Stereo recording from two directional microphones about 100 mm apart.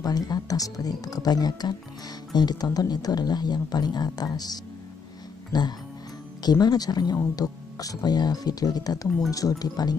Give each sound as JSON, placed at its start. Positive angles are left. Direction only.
{"t": 0.0, "sound": "speech", "side_deg": 40}